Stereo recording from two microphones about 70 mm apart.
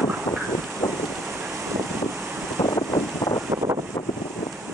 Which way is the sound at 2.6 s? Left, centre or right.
Left.